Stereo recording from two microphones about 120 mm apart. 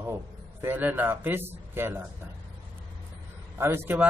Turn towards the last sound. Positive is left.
turn(degrees=-15)  # may be behind; listen again after turning